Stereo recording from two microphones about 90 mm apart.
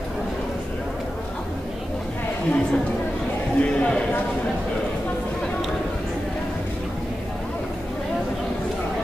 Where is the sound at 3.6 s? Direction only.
10° left (ahead or behind).